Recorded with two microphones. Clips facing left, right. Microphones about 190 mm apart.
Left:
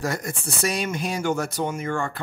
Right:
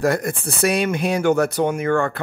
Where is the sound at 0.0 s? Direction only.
60° right (ahead or behind).